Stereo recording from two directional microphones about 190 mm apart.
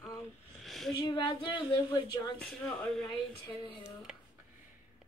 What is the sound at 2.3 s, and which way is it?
Speech, 5° left (ahead or behind).